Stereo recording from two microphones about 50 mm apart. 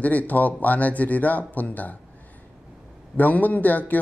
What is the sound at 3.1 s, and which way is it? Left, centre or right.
Speech, left.